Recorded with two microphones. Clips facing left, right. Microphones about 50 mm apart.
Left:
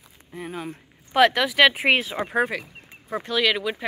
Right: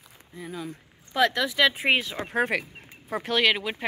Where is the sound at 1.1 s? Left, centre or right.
Left.